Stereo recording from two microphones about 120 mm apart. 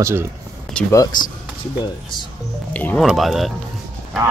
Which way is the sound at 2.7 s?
15° left (ahead or behind).